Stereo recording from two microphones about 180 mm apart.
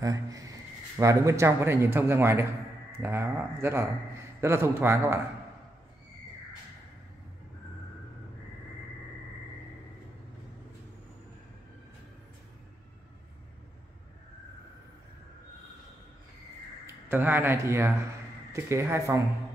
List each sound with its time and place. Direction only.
0.0 s a man's voice: 20° right (ahead or behind)
16.8 s a man's voice: 10° right (ahead or behind)